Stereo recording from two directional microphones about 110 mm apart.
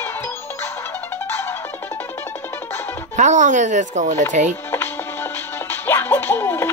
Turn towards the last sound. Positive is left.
turn(degrees=20)  # may be behind; listen again after turning